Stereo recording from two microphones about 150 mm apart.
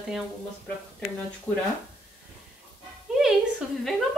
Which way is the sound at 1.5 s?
10° left (ahead or behind).